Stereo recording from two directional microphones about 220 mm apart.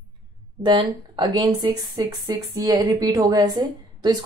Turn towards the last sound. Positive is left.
turn(degrees=-20)  # may be behind; listen again after turning